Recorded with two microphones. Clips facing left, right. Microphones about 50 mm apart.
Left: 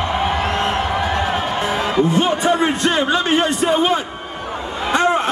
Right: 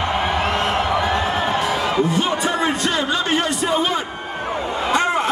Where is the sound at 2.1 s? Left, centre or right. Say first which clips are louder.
Left 4 dB; left.